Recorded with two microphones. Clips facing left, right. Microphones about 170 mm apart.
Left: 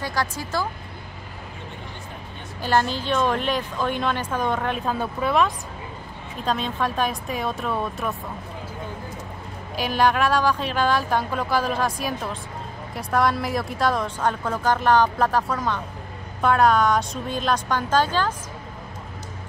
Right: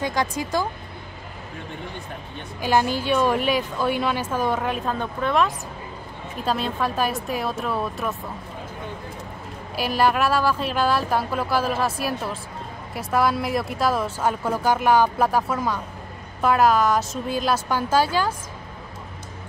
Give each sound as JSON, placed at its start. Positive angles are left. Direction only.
{"t": 0.0, "sound": "speech", "side_deg": -20}
{"t": 2.6, "sound": "a woman's voice", "side_deg": -10}
{"t": 9.8, "sound": "a woman's voice", "side_deg": -5}